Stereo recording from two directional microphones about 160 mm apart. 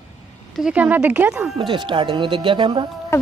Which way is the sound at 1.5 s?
30° right (ahead or behind).